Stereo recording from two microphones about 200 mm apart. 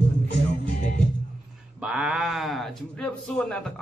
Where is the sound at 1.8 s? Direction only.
5° right (ahead or behind).